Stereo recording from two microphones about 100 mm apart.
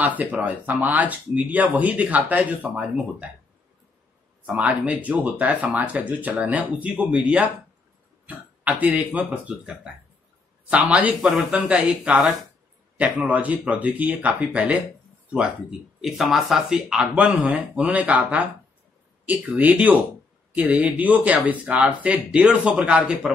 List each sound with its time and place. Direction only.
0.2 s speech: 15° right (ahead or behind)
4.5 s speech: 10° right (ahead or behind)
11.1 s speech: centre (ahead or behind)
16.0 s speech: centre (ahead or behind)